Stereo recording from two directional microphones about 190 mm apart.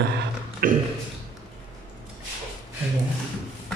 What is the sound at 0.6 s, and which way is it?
Speech, 45° right (ahead or behind).